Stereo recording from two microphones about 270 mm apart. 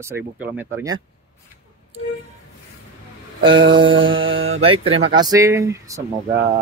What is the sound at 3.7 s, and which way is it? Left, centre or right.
Mantra, centre.